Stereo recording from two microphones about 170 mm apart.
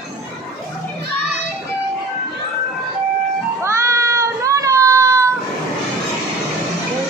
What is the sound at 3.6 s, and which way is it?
Cat, 15° right (ahead or behind).